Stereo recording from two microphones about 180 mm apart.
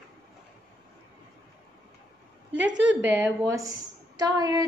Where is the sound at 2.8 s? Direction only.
10° right (ahead or behind).